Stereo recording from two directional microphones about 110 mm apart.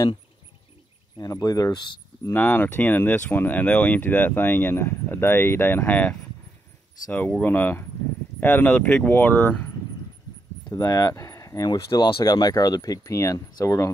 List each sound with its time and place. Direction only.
1.1 s speech: 35° left (ahead or behind)
2.3 s speech: 15° left (ahead or behind)
10.7 s speech: 30° left (ahead or behind)